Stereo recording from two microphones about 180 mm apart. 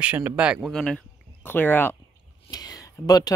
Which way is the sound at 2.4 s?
20° left (ahead or behind).